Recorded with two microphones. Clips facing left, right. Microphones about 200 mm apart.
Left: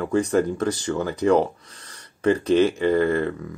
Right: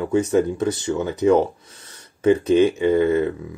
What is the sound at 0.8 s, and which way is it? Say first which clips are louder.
Speech: right 2 dB; 20° right (ahead or behind).